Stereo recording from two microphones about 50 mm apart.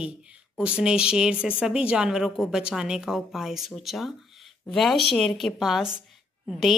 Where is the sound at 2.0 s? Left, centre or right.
Centre.